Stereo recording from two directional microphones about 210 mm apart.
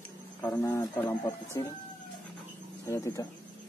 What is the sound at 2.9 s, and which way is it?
Speech, 15° left (ahead or behind).